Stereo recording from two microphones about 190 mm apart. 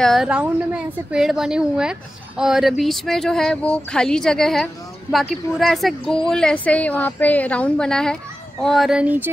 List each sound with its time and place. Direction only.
0.0 s a woman's voice: centre (ahead or behind)